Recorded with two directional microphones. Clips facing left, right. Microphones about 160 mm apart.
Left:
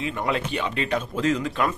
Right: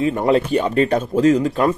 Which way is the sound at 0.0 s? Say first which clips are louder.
Right 10 dB; 40° right (ahead or behind).